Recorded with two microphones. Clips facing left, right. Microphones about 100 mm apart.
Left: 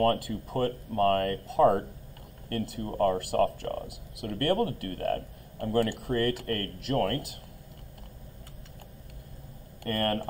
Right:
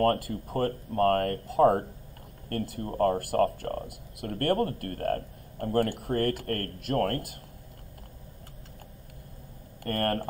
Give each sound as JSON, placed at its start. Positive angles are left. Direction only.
{"t": 0.0, "sound": "speech", "side_deg": -45}
{"t": 9.8, "sound": "speech", "side_deg": -45}